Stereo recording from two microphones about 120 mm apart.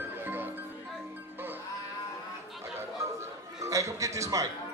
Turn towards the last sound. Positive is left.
turn(degrees=-25)  # may be behind; listen again after turning